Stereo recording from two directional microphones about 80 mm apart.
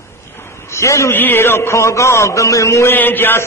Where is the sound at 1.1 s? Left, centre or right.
Left.